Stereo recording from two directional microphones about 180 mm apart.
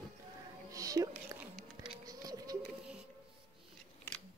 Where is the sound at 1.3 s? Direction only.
20° right (ahead or behind).